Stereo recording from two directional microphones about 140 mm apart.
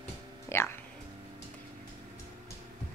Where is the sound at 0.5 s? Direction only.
20° left (ahead or behind).